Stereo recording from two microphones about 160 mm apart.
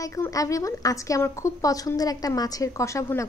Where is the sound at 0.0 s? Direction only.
20° left (ahead or behind).